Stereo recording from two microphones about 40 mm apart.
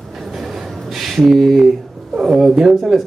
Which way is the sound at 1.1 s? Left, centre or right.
Centre.